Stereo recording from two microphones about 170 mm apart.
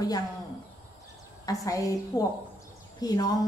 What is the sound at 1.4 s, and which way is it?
A woman's voice, 20° left (ahead or behind).